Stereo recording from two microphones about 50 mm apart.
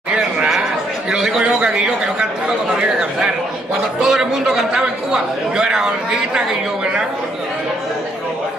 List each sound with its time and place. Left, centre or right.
1.1 s a sound: centre
1.5 s a man's voice: centre
4.1 s a man's voice: centre